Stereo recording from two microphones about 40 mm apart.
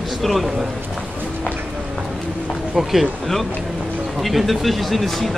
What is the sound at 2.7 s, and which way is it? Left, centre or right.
Speech, centre.